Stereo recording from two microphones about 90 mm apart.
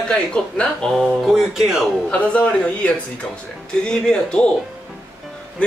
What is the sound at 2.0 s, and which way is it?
Speech, 15° left (ahead or behind).